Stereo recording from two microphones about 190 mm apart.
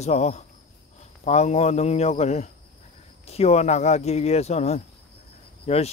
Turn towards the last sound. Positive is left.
turn(degrees=35)  # may be behind; listen again after turning